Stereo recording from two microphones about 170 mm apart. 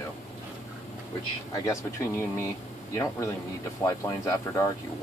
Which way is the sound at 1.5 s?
20° left (ahead or behind).